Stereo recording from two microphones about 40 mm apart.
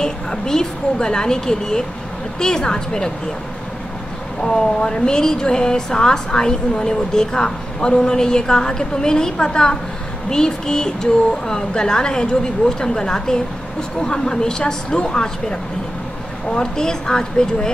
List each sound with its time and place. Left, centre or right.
0.0 s a woman's voice: centre
4.4 s a woman's voice: centre